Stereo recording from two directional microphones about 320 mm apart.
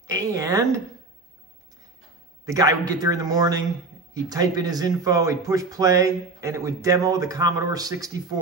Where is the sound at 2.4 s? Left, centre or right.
Centre.